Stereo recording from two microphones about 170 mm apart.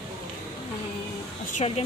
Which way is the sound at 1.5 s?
40° left (ahead or behind).